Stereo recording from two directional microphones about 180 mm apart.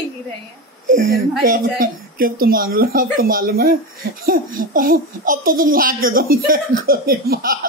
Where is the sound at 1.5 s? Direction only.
50° right (ahead or behind).